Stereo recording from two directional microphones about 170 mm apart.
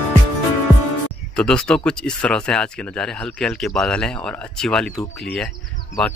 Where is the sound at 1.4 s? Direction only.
5° left (ahead or behind).